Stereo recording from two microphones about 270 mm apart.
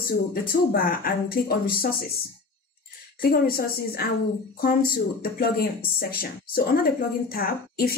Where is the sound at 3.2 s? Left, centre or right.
Left.